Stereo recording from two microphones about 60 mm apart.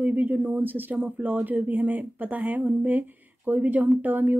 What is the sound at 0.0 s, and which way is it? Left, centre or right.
Speech, right.